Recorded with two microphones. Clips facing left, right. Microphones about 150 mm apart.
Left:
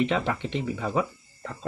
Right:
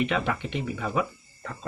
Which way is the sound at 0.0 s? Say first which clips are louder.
Left 1 dB; 30° left (ahead or behind).